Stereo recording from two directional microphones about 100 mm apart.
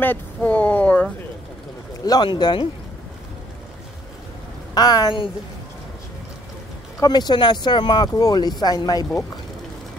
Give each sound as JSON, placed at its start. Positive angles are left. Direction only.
{"t": 0.0, "sound": "speech", "side_deg": 15}
{"t": 2.2, "sound": "speech", "side_deg": 50}
{"t": 4.7, "sound": "speech", "side_deg": 40}
{"t": 7.0, "sound": "speech", "side_deg": 45}